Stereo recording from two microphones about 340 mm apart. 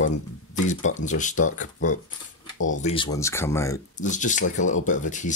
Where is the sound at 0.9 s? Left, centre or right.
Left.